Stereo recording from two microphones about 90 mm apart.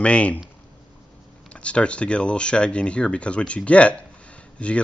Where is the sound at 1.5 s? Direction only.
15° left (ahead or behind).